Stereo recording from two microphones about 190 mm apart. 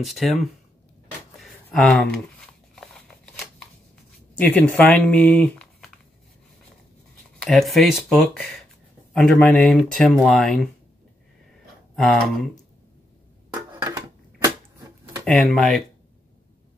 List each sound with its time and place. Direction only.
0.0 s speech: centre (ahead or behind)
1.4 s a sound: centre (ahead or behind)
2.7 s scissors: centre (ahead or behind)
4.4 s speech: 10° left (ahead or behind)
7.3 s speech: centre (ahead or behind)
11.9 s speech: centre (ahead or behind)
13.8 s a sound: 20° right (ahead or behind)
15.2 s speech: centre (ahead or behind)